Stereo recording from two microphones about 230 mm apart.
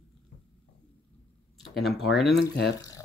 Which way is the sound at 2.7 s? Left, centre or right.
Centre.